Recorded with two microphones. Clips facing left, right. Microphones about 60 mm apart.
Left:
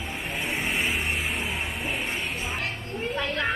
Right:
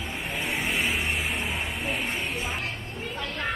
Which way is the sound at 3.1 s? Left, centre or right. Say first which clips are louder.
Left 4 dB; left.